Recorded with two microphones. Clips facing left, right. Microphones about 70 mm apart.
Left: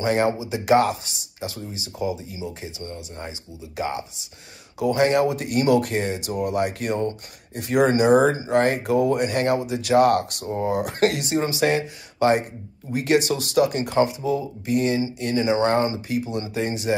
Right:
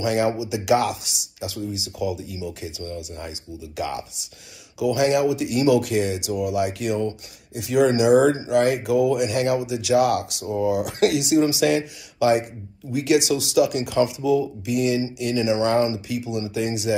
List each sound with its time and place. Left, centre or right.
0.0 s speech: left